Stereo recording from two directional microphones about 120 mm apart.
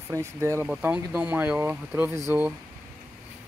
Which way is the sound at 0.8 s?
10° right (ahead or behind).